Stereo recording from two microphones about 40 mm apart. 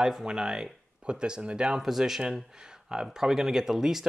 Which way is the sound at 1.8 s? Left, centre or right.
Centre.